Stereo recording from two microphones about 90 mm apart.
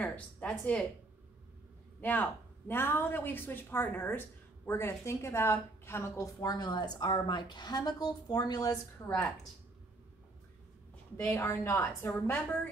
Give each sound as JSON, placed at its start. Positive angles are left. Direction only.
{"t": 0.0, "sound": "speech", "side_deg": 15}
{"t": 2.0, "sound": "a woman's voice", "side_deg": 20}
{"t": 11.1, "sound": "a woman's voice", "side_deg": 25}